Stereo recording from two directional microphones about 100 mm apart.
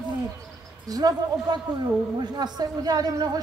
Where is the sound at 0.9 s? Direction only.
40° right (ahead or behind).